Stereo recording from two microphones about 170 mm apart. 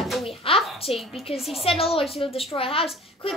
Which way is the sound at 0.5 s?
35° left (ahead or behind).